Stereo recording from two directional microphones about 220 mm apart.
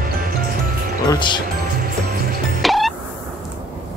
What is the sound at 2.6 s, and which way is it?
Music, centre (ahead or behind).